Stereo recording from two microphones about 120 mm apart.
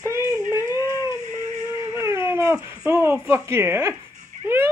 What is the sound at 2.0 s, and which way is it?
Dog, 25° right (ahead or behind).